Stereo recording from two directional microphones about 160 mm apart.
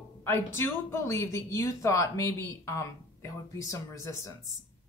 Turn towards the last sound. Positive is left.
turn(degrees=20)  # may be behind; listen again after turning